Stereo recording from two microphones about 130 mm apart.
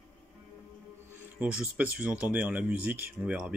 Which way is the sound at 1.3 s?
10° right (ahead or behind).